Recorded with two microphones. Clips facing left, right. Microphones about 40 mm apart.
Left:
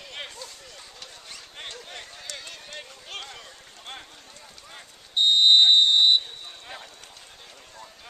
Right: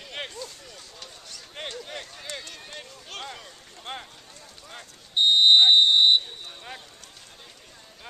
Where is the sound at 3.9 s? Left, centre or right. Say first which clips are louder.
Right 4 dB; centre.